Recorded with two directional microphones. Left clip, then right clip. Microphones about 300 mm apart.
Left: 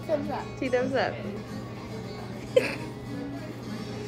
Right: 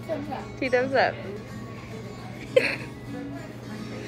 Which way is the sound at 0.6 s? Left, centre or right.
Centre.